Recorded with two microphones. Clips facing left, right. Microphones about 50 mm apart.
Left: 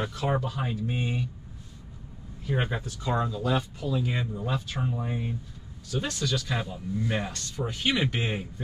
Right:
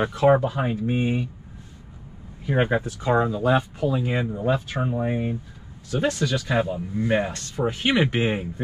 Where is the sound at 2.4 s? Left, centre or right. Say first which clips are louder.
Right 8 dB; right.